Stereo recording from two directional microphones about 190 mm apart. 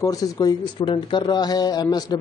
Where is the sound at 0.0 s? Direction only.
20° left (ahead or behind).